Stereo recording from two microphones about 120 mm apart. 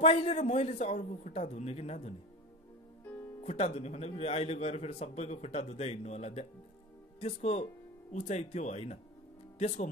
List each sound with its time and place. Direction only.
0.0 s a man's voice: 60° left (ahead or behind)
3.4 s a man's voice: 60° left (ahead or behind)